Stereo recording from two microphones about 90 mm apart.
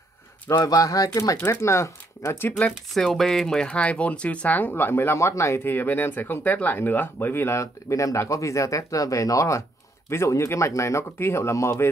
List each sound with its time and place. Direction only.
0.7 s speech: 40° left (ahead or behind)
1.4 s speech: 30° left (ahead or behind)
3.0 s speech: 5° left (ahead or behind); by 11.9 s 35° left (ahead or behind)